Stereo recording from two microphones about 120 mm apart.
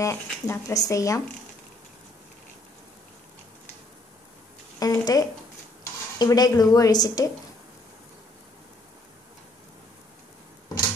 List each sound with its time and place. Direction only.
0.0 s speech: 25° left (ahead or behind)
4.7 s a sound: 30° left (ahead or behind)
6.1 s a woman's voice: 30° left (ahead or behind)